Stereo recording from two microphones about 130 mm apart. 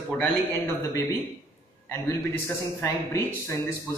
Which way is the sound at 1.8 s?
20° left (ahead or behind).